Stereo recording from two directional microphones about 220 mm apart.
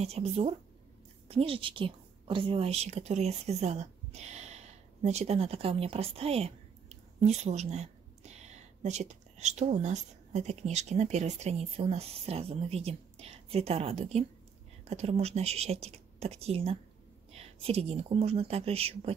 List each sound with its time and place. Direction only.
0.0 s a woman's voice: 30° right (ahead or behind)